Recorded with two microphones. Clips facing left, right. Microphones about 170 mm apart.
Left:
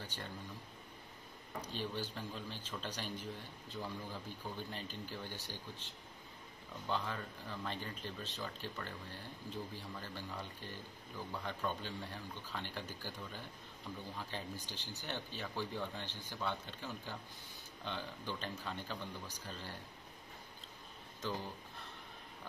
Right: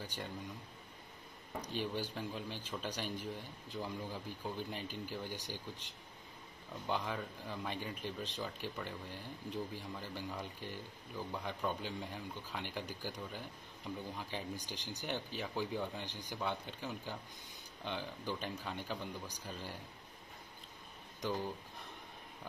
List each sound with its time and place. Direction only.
0.0 s speech: 10° right (ahead or behind)
1.7 s speech: 15° right (ahead or behind)
21.2 s speech: 15° right (ahead or behind)